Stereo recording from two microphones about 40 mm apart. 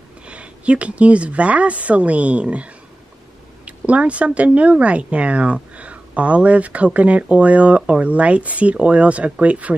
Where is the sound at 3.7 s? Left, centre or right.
Right.